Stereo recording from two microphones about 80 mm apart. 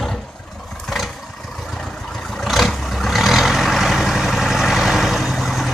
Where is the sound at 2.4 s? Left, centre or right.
Centre.